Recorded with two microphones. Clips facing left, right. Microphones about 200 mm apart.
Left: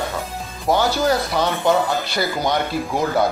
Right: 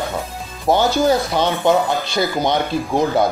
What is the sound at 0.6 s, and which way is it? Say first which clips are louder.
Speech: right 3 dB; 25° right (ahead or behind).